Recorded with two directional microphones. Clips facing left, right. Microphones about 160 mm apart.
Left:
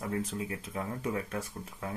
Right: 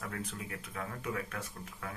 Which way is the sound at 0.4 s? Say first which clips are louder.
Left 5 dB; 25° left (ahead or behind).